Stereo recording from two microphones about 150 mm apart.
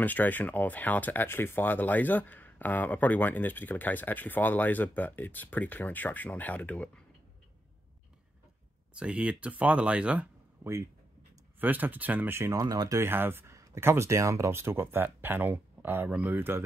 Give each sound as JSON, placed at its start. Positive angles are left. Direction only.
{"t": 0.0, "sound": "speech", "side_deg": 10}
{"t": 8.9, "sound": "speech", "side_deg": -5}